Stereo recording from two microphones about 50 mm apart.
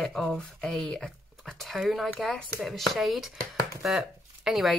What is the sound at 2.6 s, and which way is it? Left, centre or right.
Speech, centre.